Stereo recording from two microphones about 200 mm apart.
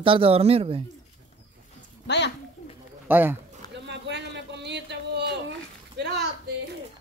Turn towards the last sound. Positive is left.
turn(degrees=-55)  # may be behind; listen again after turning